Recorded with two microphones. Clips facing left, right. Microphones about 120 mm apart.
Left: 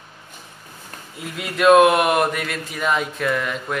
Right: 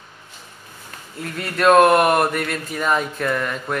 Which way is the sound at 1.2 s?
5° left (ahead or behind).